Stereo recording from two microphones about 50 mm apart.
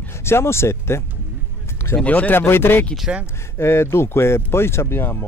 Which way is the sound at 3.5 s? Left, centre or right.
Left.